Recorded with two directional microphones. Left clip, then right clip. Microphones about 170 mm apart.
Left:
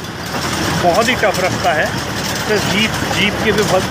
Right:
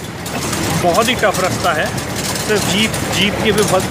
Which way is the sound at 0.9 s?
10° right (ahead or behind).